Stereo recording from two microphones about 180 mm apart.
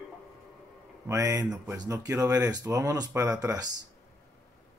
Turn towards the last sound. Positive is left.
turn(degrees=-20)  # may be behind; listen again after turning